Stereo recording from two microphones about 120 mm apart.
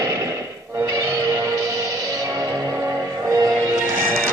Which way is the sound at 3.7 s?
15° right (ahead or behind).